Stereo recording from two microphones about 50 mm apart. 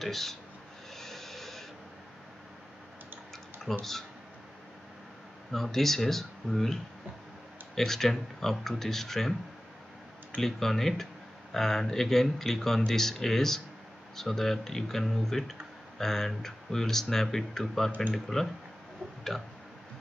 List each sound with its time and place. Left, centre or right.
0.0 s speech: centre
0.9 s a sound: centre
3.7 s speech: centre
5.5 s speech: centre
10.4 s speech: centre